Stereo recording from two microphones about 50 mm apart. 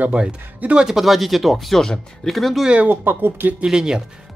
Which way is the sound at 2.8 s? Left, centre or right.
Right.